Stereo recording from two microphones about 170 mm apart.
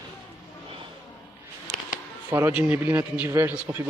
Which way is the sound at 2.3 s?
10° right (ahead or behind).